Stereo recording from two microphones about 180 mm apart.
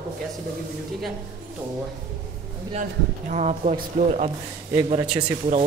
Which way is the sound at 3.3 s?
40° right (ahead or behind).